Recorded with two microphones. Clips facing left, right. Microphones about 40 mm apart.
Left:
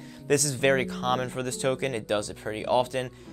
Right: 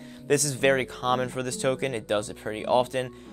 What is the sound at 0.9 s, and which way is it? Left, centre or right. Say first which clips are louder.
Speech: right 1 dB; right.